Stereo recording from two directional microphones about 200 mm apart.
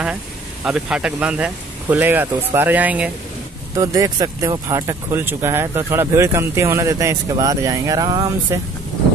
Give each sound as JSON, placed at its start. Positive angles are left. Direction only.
{"t": 0.7, "sound": "speech", "side_deg": -5}